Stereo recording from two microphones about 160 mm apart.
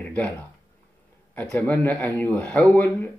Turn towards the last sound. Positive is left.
turn(degrees=10)  # may be behind; listen again after turning